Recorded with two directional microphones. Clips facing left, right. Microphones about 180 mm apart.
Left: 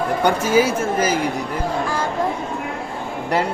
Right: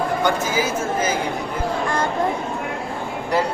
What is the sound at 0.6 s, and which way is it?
Speech, 70° left (ahead or behind).